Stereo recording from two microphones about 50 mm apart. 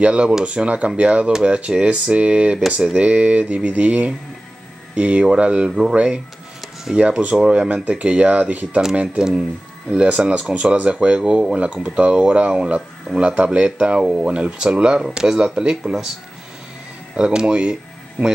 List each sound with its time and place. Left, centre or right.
0.0 s speech: right
5.7 s speech: centre
5.9 s speech: right
17.1 s speech: centre
18.2 s speech: right